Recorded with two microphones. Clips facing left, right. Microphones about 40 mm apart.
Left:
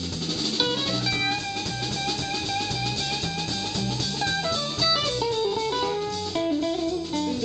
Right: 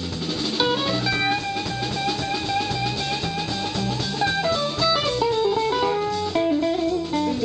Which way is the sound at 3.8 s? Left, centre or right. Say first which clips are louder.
Right 5 dB; centre.